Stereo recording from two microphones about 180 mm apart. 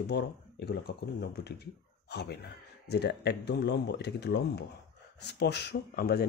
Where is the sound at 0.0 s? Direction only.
65° left (ahead or behind).